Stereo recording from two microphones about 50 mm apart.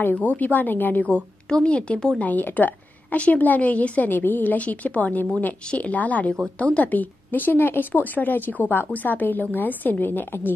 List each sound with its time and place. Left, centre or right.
0.1 s a woman's voice: left
1.1 s a woman's voice: left
2.1 s a woman's voice: left
4.1 s a woman's voice: left